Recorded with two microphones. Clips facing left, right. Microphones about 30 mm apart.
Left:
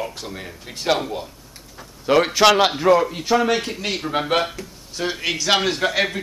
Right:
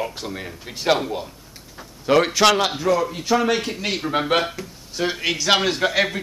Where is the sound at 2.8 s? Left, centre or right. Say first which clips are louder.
Left 4 dB; left.